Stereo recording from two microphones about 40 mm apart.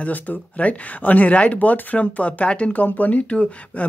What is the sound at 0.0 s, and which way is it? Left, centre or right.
Speech, left.